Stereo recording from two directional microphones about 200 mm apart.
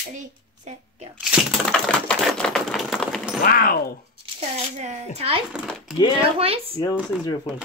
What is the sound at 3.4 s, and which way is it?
Speech, 45° left (ahead or behind).